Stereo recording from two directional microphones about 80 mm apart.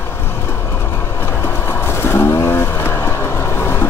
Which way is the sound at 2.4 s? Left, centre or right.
Left.